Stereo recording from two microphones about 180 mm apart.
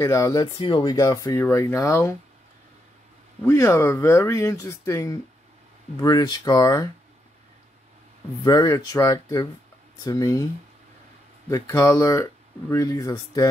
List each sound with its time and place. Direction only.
0.0 s speech: 15° left (ahead or behind)
3.4 s speech: 15° left (ahead or behind)
8.5 s speech: 20° left (ahead or behind)